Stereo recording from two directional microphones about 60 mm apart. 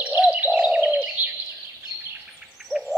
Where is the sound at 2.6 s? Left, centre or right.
Centre.